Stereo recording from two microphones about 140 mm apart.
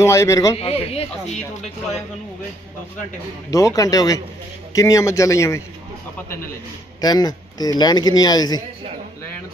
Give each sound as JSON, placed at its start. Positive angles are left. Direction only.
{"t": 0.0, "sound": "a man's voice", "side_deg": 20}
{"t": 0.6, "sound": "speech", "side_deg": 45}
{"t": 3.4, "sound": "a man's voice", "side_deg": 25}
{"t": 7.0, "sound": "a man's voice", "side_deg": 30}